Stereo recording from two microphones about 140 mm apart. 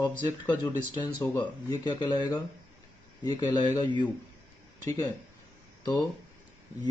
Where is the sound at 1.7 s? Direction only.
30° left (ahead or behind).